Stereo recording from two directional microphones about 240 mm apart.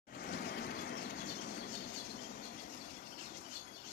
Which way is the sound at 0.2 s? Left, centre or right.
Left.